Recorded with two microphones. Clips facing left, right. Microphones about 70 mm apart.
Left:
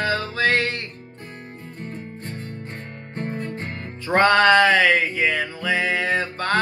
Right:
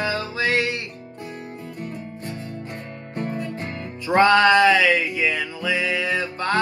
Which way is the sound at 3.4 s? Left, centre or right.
Left.